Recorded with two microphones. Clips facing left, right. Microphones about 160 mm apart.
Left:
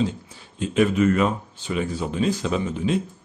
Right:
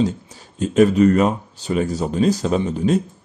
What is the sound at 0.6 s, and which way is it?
Speech, 40° right (ahead or behind).